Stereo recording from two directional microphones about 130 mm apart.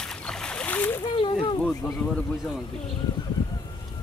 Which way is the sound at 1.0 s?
40° left (ahead or behind).